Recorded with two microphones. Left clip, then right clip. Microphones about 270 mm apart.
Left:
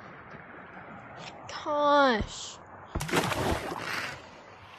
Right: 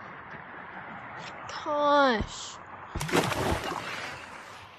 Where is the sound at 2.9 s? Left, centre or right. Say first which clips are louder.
Right 1 dB; centre.